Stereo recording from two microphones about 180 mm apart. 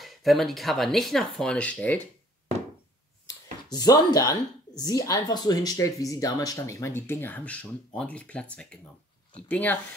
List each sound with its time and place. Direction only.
0.0 s speech: centre (ahead or behind)
3.7 s a woman's voice: 20° left (ahead or behind)